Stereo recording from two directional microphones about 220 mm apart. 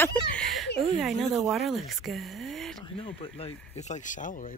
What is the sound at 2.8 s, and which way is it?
Speech, 25° left (ahead or behind).